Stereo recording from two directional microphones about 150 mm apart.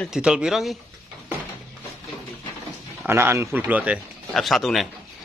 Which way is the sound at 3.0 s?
15° right (ahead or behind).